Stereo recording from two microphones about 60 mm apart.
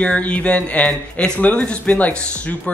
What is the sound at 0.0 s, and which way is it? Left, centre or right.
Speech, centre.